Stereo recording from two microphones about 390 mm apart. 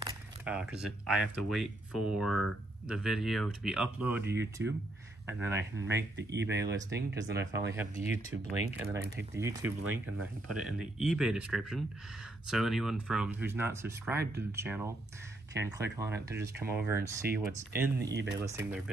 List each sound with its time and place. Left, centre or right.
0.0 s speech: centre
6.1 s speech: right
6.6 s speech: centre
7.3 s speech: right
8.0 s speech: centre
9.0 s speech: right
9.3 s speech: centre
9.8 s speech: right
10.5 s speech: centre
18.1 s speech: right